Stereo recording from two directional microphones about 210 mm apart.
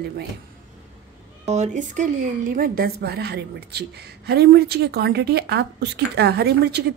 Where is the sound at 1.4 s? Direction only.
30° right (ahead or behind).